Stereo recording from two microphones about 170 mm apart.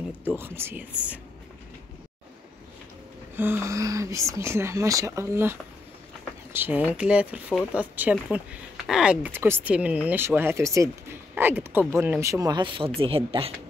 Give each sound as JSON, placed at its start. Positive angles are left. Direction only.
{"t": 0.4, "sound": "speech", "side_deg": -15}
{"t": 3.3, "sound": "speech", "side_deg": -15}